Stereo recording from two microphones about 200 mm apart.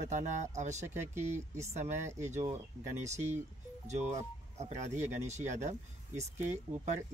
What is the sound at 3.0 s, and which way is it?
Speech, 35° right (ahead or behind).